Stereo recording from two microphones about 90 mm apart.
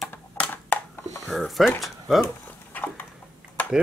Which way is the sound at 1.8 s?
Centre (ahead or behind).